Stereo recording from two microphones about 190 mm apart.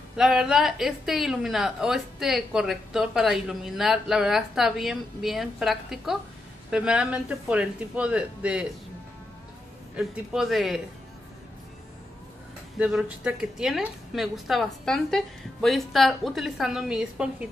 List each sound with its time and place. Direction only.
0.2 s speech: 5° right (ahead or behind)
9.9 s speech: centre (ahead or behind)
12.7 s speech: 5° right (ahead or behind)